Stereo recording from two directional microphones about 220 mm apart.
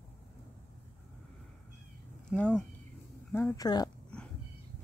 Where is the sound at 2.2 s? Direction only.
5° left (ahead or behind).